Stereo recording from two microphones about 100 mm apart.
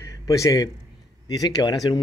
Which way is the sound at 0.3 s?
35° left (ahead or behind).